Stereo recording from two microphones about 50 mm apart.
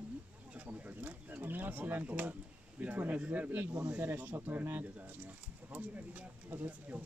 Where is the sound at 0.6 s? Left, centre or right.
Right.